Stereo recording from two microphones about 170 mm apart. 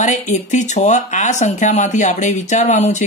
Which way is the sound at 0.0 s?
45° left (ahead or behind).